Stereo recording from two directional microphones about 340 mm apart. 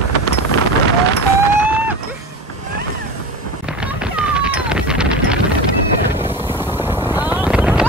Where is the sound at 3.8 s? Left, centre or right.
Centre.